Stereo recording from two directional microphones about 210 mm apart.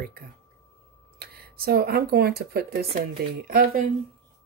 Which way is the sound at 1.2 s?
45° right (ahead or behind).